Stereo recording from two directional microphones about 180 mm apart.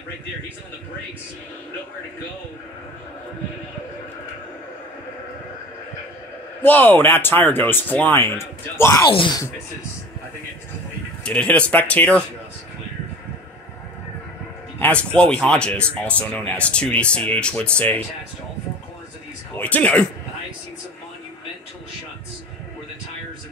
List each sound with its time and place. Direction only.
6.6 s speech: 10° left (ahead or behind)
9.0 s speech: 25° left (ahead or behind)
11.2 s speech: 5° left (ahead or behind)
14.8 s speech: 5° left (ahead or behind)
19.5 s speech: 10° left (ahead or behind)